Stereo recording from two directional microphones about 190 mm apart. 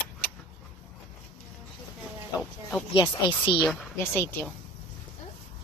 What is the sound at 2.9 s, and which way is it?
Speech, 25° left (ahead or behind).